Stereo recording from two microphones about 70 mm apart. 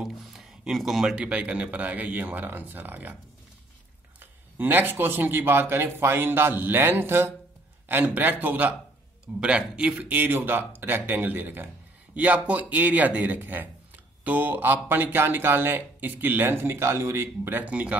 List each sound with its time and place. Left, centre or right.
0.0 s a sound: centre
1.1 s speech: centre
4.2 s speech: right
17.6 s speech: centre